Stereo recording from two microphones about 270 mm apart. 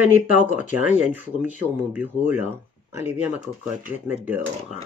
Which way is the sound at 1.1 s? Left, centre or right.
Centre.